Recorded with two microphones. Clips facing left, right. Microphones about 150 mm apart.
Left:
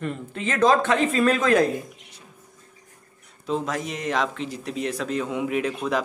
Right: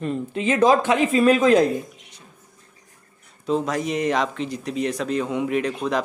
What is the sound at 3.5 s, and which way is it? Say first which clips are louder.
Speech: right 4 dB; centre (ahead or behind).